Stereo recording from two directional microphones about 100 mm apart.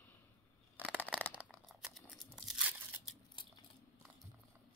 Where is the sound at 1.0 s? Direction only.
15° left (ahead or behind).